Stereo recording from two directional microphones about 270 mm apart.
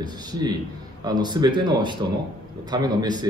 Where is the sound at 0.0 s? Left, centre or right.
Centre.